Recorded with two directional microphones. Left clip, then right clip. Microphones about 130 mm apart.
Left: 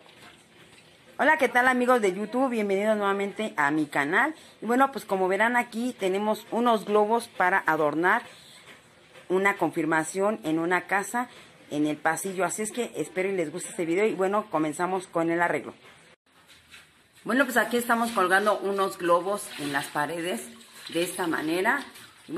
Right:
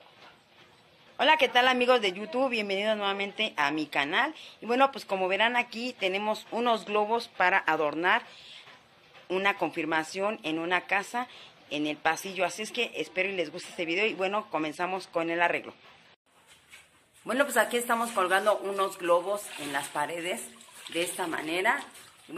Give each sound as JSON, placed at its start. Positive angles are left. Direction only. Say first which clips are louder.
{"t": 1.1, "sound": "a woman's voice", "louder": "left 1 dB", "side_deg": 0}
{"t": 9.3, "sound": "a woman's voice", "louder": "left 3 dB", "side_deg": 0}
{"t": 17.3, "sound": "speech", "louder": "left 2 dB", "side_deg": 5}